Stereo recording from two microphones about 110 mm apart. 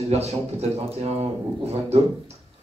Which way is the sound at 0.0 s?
70° right (ahead or behind).